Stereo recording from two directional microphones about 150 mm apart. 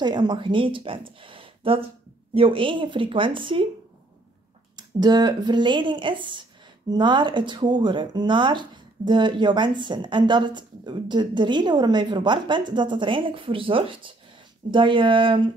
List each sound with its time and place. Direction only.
0.0 s speech: 30° right (ahead or behind)
4.7 s speech: 25° right (ahead or behind)